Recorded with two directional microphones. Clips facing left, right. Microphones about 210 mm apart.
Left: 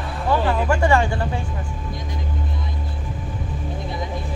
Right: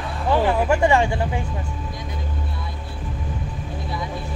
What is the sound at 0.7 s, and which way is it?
Speech, 20° right (ahead or behind).